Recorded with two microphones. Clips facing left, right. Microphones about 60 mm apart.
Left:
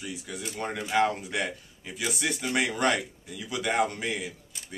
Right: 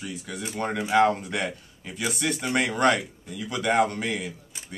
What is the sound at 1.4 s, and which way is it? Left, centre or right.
Speech, centre.